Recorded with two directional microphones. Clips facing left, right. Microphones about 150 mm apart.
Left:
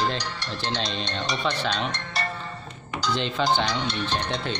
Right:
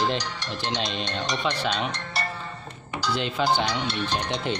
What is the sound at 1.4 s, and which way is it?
Music, 10° right (ahead or behind).